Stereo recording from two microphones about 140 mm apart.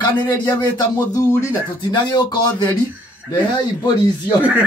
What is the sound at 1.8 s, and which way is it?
Speech, 30° left (ahead or behind).